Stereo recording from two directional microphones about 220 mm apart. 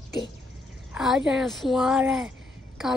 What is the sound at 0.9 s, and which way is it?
Speech, centre (ahead or behind).